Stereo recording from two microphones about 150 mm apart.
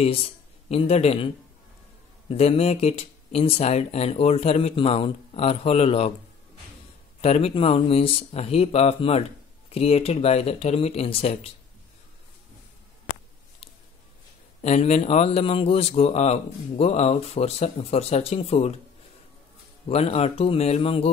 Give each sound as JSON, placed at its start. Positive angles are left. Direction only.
{"t": 0.0, "sound": "speech", "side_deg": 40}
{"t": 7.2, "sound": "speech", "side_deg": 45}
{"t": 14.6, "sound": "speech", "side_deg": 45}
{"t": 19.9, "sound": "speech", "side_deg": 45}